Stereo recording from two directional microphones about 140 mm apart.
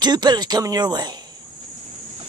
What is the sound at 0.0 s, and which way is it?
Speech, 30° right (ahead or behind).